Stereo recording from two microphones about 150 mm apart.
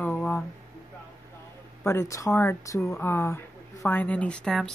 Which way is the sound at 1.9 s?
20° left (ahead or behind).